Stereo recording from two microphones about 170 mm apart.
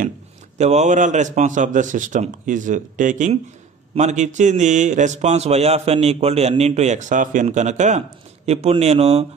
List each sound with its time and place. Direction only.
0.6 s a man's voice: 40° right (ahead or behind)